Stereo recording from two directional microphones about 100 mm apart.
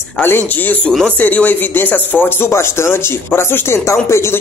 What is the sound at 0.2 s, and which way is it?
Speech, 20° left (ahead or behind).